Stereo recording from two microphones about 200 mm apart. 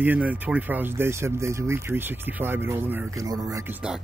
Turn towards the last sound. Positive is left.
turn(degrees=-15)  # may be behind; listen again after turning